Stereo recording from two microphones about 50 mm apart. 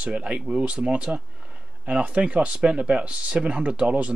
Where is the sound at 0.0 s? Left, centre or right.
Right.